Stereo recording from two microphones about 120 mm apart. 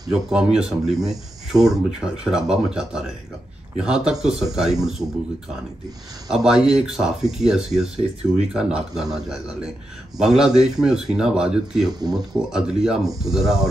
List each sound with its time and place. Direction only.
0.1 s a man's voice: 5° right (ahead or behind)
6.3 s speech: 5° right (ahead or behind)
11.9 s speech: 35° right (ahead or behind)
12.2 s speech: 5° right (ahead or behind)